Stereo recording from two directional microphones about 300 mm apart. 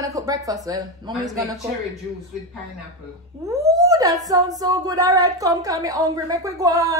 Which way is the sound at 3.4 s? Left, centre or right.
Centre.